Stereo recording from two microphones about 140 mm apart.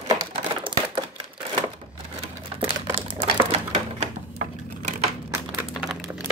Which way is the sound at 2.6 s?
45° right (ahead or behind).